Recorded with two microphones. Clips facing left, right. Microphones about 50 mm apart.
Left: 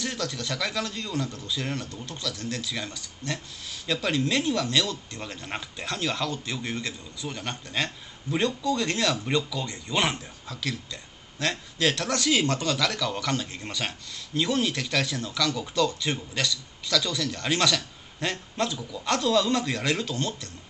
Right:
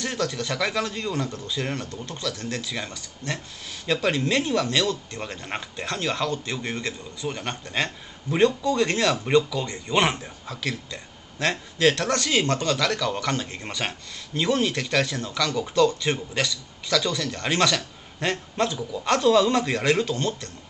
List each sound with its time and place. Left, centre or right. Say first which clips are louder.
0.0 s a man's voice: right 4 dB; centre